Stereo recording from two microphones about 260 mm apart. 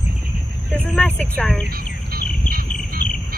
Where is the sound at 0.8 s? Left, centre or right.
Centre.